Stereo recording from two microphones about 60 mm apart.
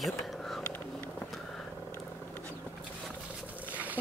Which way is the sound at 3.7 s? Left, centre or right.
Right.